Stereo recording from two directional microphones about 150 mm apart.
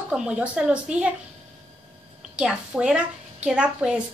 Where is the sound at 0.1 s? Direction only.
5° right (ahead or behind).